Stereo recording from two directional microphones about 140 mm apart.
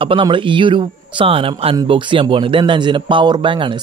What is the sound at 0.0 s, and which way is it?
A man's voice, 35° right (ahead or behind).